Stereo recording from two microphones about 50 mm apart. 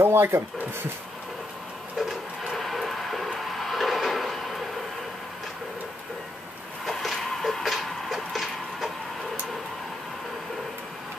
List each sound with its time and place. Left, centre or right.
0.0 s speech: right
2.0 s a sound: centre
6.9 s tick-tock: centre